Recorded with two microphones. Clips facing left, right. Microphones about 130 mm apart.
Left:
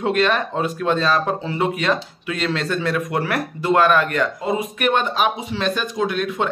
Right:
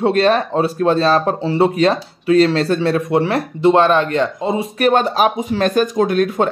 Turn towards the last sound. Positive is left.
turn(degrees=-45)  # may be behind; listen again after turning